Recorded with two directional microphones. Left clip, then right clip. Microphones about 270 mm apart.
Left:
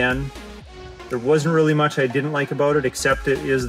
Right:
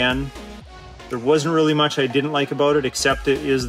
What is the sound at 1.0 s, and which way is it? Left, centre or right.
Speech, centre.